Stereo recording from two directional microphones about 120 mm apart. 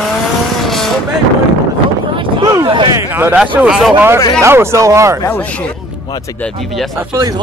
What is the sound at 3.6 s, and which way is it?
Speech, 5° right (ahead or behind).